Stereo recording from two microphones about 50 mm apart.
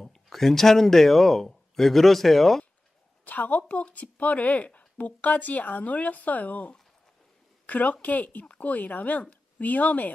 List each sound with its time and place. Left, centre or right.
0.0 s speech: centre
3.3 s speech: left